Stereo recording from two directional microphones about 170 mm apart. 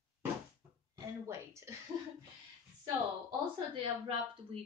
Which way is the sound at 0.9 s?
20° right (ahead or behind).